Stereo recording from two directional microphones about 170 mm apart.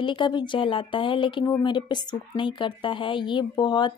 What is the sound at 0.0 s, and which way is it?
Speech, 30° left (ahead or behind).